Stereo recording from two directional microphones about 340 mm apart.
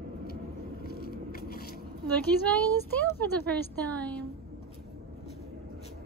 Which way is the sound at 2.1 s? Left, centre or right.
Centre.